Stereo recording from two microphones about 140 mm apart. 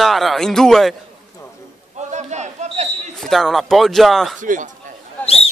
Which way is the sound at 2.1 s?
55° right (ahead or behind).